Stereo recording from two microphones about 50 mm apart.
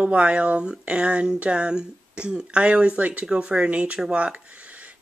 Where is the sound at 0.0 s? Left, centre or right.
Right.